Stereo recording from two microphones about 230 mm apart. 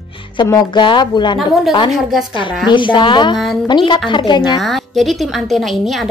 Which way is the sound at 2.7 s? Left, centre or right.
Left.